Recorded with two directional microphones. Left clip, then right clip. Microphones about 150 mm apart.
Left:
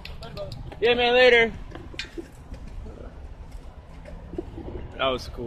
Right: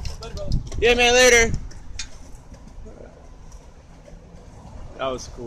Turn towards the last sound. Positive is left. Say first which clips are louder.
# left 2 dB
turn(degrees=0)  # may be behind; listen again after turning